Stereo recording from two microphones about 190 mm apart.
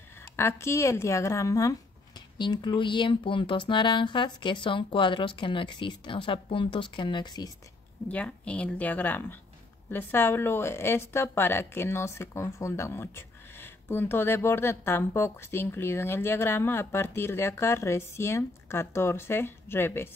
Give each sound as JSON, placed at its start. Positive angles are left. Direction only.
{"t": 0.4, "sound": "speech", "side_deg": 15}
{"t": 8.1, "sound": "a woman's voice", "side_deg": 5}